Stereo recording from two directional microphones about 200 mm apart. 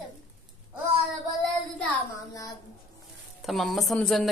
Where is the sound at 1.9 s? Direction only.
15° left (ahead or behind).